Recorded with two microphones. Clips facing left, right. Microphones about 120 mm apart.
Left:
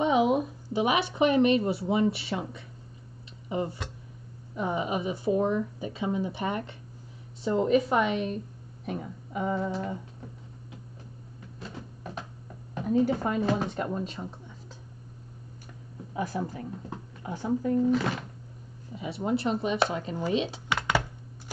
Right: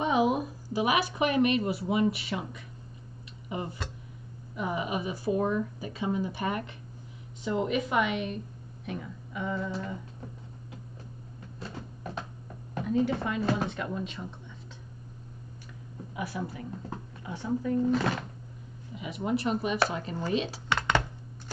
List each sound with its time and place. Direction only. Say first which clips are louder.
0.0 s speech: left 2 dB; 25° left (ahead or behind); by 9.9 s 40° left (ahead or behind)
12.8 s speech: left 3 dB; 40° left (ahead or behind)
16.1 s speech: left 4 dB; 35° left (ahead or behind)
18.9 s speech: left 1 dB; 35° left (ahead or behind)
20.2 s dishes: left 2 dB; 15° left (ahead or behind)
20.6 s computer keyboard: even; 5° left (ahead or behind)